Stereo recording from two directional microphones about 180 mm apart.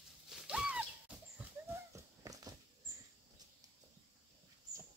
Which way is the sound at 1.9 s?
20° right (ahead or behind).